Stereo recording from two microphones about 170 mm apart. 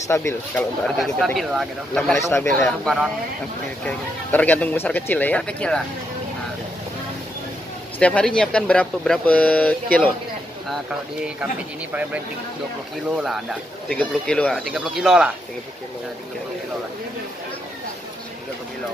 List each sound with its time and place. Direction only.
0.1 s speech: 15° left (ahead or behind)
0.9 s speech: centre (ahead or behind)
2.1 s speech: 15° left (ahead or behind)
2.8 s speech: centre (ahead or behind)
8.0 s speech: 5° left (ahead or behind)
10.7 s speech: 5° right (ahead or behind)
13.2 s speech: centre (ahead or behind)